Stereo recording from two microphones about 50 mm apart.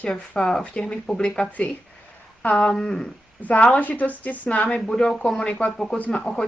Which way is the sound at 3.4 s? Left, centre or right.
Left.